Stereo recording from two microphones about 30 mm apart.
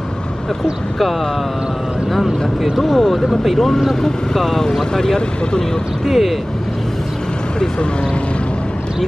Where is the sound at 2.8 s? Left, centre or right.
Centre.